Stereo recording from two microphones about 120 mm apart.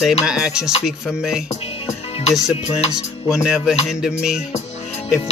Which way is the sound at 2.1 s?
60° left (ahead or behind).